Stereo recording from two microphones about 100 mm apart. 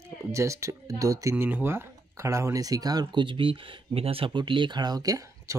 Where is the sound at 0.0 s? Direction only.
30° right (ahead or behind).